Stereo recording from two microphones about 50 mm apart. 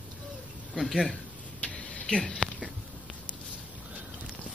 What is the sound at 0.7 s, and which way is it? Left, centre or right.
Speech, centre.